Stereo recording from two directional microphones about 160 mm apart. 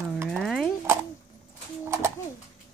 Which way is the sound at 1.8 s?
15° right (ahead or behind).